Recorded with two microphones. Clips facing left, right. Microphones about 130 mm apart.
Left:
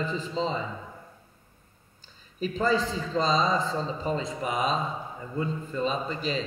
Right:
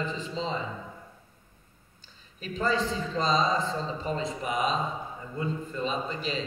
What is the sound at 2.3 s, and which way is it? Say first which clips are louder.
A man's voice: left 3 dB; 40° left (ahead or behind).